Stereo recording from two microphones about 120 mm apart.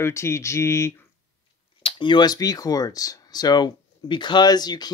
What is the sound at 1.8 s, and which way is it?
Speech, 45° left (ahead or behind).